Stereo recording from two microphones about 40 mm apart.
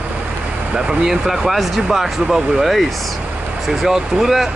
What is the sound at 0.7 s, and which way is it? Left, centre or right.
Speech, centre.